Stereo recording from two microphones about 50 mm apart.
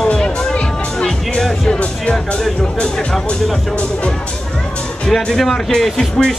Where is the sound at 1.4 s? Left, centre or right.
Centre.